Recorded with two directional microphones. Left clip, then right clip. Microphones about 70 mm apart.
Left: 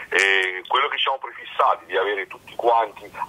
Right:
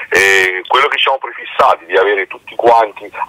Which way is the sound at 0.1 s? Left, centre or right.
Right.